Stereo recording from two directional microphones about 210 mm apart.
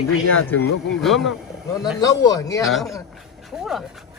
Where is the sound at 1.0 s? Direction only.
Centre (ahead or behind).